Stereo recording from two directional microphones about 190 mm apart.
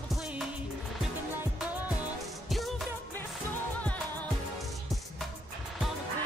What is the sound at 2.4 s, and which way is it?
Music, centre (ahead or behind).